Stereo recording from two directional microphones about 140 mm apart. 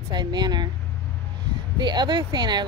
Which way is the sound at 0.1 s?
30° right (ahead or behind).